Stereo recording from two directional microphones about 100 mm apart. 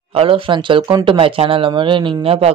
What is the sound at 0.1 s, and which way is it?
Speech, 65° right (ahead or behind).